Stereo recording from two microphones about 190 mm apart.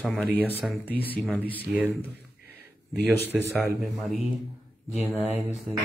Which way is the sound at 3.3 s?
Centre (ahead or behind).